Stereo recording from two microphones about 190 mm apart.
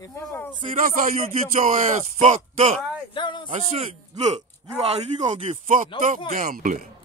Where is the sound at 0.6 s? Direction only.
45° right (ahead or behind).